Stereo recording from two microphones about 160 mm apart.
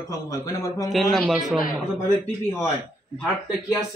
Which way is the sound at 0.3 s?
20° left (ahead or behind).